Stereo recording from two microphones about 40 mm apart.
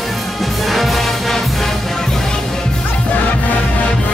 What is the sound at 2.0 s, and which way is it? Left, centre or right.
Music, centre.